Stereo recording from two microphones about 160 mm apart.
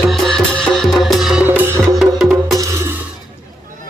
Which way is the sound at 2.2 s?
Centre (ahead or behind).